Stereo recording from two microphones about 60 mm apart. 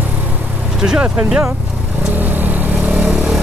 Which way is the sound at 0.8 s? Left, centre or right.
Centre.